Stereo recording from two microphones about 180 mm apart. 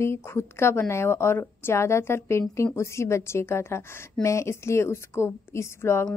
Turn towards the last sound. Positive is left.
turn(degrees=15)  # may be behind; listen again after turning